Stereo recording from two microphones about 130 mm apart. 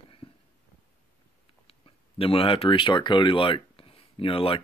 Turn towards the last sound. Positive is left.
turn(degrees=45)  # may be behind; listen again after turning